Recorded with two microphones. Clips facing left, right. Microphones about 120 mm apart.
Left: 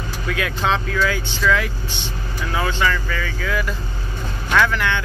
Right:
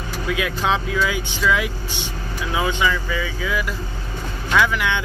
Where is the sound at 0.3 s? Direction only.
5° right (ahead or behind).